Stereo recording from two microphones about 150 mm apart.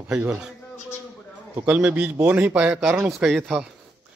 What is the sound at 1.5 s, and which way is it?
A man's voice, 15° right (ahead or behind).